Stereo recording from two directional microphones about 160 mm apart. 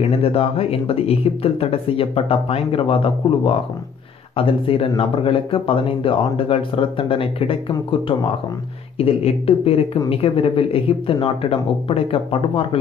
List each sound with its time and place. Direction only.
0.0 s speech: 40° left (ahead or behind)